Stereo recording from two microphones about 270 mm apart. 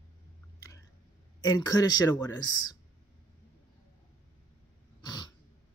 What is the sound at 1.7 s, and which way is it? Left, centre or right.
Speech, centre.